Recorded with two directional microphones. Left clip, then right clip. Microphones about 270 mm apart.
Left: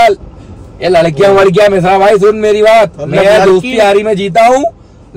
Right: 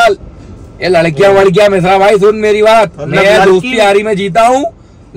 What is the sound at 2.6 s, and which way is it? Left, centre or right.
A man's voice, right.